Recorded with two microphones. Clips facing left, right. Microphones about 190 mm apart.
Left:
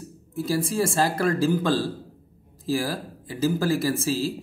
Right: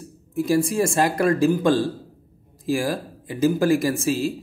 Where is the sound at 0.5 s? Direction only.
15° right (ahead or behind).